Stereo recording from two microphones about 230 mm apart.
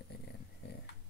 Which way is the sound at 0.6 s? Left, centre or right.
Left.